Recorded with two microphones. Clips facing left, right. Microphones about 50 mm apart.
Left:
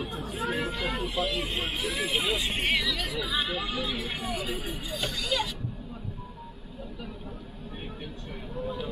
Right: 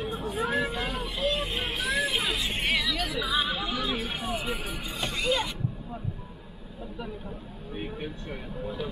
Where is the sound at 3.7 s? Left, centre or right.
Right.